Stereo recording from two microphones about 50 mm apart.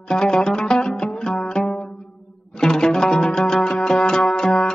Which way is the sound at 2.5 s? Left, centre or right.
Centre.